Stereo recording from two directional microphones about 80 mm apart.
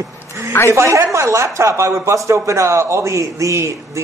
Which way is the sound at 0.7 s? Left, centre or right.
Right.